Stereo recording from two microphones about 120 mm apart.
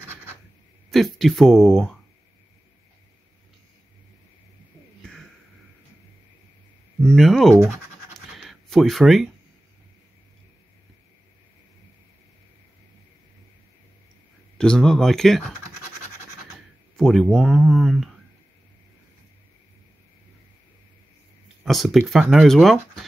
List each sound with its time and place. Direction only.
0.8 s speech: centre (ahead or behind)
7.0 s speech: centre (ahead or behind)
7.6 s scratch: centre (ahead or behind)
14.6 s speech: 5° left (ahead or behind)
16.9 s speech: 5° left (ahead or behind)
21.6 s speech: centre (ahead or behind)